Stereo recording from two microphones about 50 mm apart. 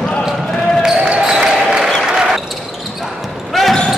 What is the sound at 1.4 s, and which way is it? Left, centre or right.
Basketball bounce, centre.